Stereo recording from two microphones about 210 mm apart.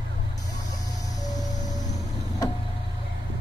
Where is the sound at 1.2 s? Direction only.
15° left (ahead or behind).